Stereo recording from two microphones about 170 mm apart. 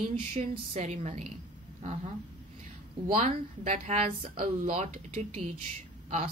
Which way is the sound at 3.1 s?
40° right (ahead or behind).